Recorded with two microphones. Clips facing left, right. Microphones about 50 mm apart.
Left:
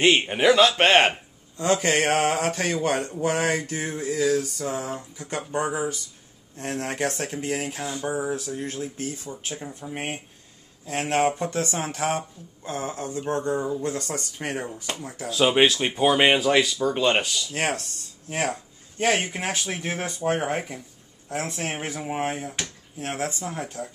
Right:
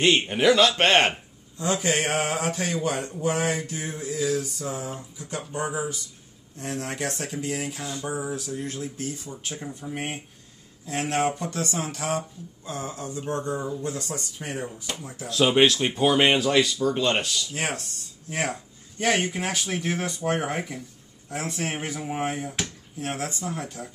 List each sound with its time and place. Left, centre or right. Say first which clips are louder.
0.0 s speech: left 1 dB; centre
1.6 s speech: left 3 dB; left
7.8 s speech: left 3 dB; centre
8.3 s speech: left 2 dB; left
9.3 s speech: left 1 dB; centre
9.9 s speech: left 3 dB; left
14.9 s speech: left 4 dB; left
15.2 s speech: even; centre
17.5 s speech: left 3 dB; left
18.9 s speech: left 1 dB; centre
22.4 s speech: right 1 dB; centre
23.5 s speech: even; left